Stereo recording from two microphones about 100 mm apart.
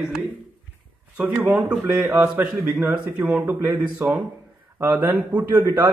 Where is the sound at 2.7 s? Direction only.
10° right (ahead or behind).